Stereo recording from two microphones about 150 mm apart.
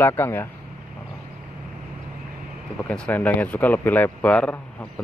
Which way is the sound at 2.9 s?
10° left (ahead or behind).